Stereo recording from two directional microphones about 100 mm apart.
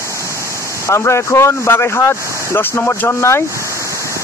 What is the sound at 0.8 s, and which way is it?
A man's voice, 30° left (ahead or behind).